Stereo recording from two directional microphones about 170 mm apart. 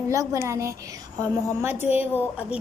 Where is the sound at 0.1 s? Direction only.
20° right (ahead or behind).